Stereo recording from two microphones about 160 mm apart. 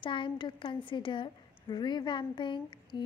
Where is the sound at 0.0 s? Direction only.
30° left (ahead or behind).